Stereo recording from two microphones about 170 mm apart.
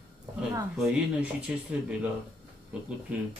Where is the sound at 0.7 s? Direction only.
5° right (ahead or behind).